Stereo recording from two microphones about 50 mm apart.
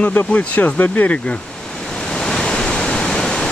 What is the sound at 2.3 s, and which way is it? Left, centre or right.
Waterfall, centre.